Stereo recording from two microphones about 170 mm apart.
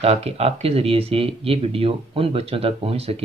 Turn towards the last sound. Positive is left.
turn(degrees=-35)  # may be behind; listen again after turning